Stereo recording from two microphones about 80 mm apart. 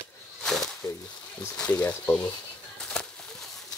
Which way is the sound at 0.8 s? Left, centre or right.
Left.